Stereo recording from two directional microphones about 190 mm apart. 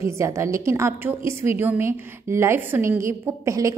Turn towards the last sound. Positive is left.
turn(degrees=-15)  # may be behind; listen again after turning